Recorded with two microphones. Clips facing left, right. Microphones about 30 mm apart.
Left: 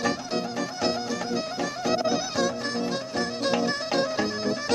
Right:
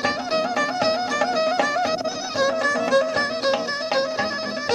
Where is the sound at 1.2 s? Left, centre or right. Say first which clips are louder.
Right 8 dB; right.